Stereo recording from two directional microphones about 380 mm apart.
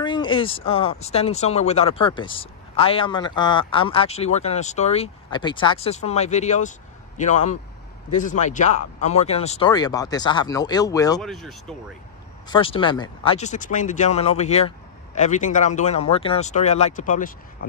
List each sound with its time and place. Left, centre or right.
0.0 s speech: centre
12.4 s speech: centre